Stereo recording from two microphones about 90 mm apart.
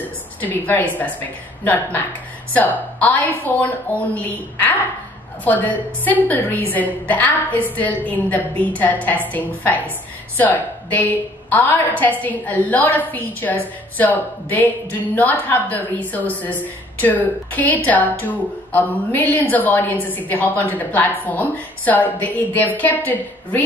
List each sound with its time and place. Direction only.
0.4 s a woman's voice: 20° left (ahead or behind)